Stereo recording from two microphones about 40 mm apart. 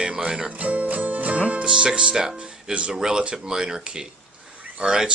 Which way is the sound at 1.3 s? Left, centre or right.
Right.